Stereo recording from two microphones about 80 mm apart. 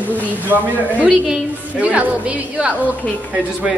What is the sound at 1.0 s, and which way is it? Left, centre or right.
A woman's voice, centre.